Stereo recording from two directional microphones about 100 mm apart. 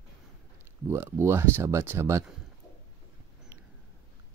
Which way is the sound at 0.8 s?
25° right (ahead or behind).